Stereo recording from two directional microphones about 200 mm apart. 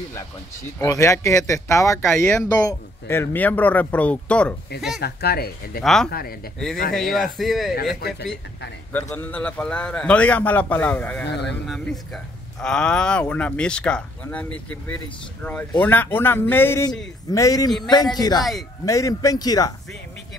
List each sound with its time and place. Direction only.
0.7 s speech: 15° left (ahead or behind)
5.0 s speech: 50° left (ahead or behind)
5.8 s speech: centre (ahead or behind)
6.0 s speech: 50° left (ahead or behind)
7.0 s speech: centre (ahead or behind)
7.7 s speech: 55° left (ahead or behind)
8.9 s speech: 10° left (ahead or behind)
15.8 s a man's voice: 10° left (ahead or behind)